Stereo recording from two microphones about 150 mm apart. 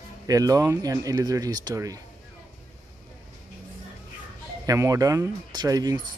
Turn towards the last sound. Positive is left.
turn(degrees=-25)  # may be behind; listen again after turning